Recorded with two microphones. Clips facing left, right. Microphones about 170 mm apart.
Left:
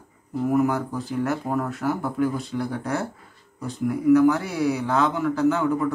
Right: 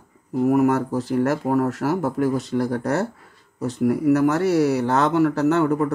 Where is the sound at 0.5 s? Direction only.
70° right (ahead or behind).